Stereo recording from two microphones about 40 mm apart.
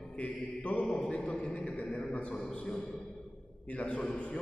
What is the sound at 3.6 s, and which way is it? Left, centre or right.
Mantra, left.